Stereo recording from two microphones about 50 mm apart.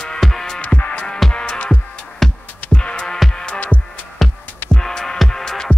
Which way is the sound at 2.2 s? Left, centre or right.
Centre.